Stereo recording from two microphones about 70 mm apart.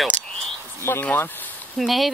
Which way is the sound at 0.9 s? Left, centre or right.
Left.